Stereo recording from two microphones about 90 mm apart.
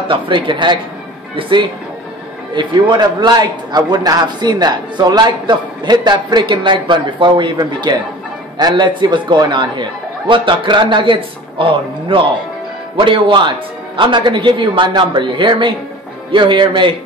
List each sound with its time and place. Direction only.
0.1 s a man's voice: 65° right (ahead or behind)
13.0 s a man's voice: 65° right (ahead or behind)